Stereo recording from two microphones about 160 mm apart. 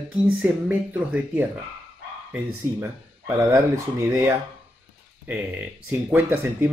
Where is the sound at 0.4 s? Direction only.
10° right (ahead or behind).